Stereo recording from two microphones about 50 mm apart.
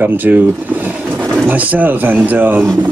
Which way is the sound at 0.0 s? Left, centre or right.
Right.